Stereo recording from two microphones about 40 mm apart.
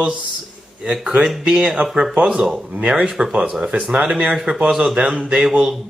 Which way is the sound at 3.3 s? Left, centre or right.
Right.